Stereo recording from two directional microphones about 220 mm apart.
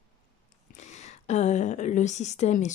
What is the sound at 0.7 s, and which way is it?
Speech, 30° left (ahead or behind).